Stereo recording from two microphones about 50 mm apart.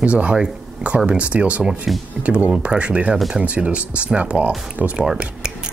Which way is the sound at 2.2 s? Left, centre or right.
Right.